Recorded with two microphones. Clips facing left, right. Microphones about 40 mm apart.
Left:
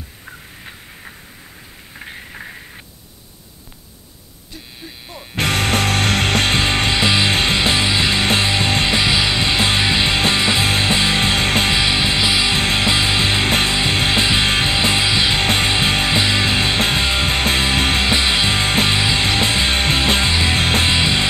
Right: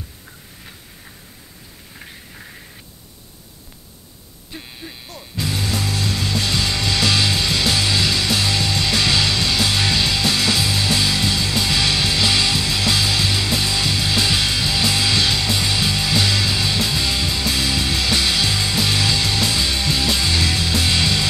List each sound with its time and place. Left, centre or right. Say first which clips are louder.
2.0 s a sound: left 9 dB; left
5.3 s music: left 6 dB; left
7.0 s music: left 1 dB; left
8.9 s music: left 2 dB; left
11.7 s music: left 2 dB; left
12.5 s music: left 3 dB; left
15.3 s music: left 4 dB; left
20.9 s music: left 3 dB; left